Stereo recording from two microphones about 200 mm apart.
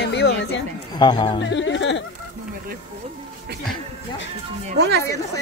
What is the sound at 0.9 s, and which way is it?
Speech, 20° left (ahead or behind).